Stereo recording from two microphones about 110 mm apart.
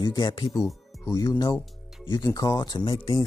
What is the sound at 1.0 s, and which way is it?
Speech, 30° left (ahead or behind).